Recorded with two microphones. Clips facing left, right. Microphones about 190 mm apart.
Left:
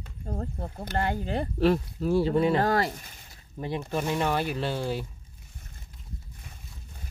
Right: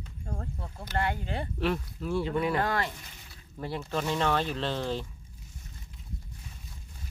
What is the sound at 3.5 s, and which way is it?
Speech, 20° left (ahead or behind).